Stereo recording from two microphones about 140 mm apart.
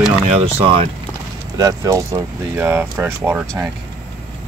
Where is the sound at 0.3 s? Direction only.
45° right (ahead or behind).